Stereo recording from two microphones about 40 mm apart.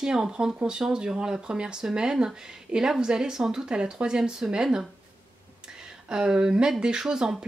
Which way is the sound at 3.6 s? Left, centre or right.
Right.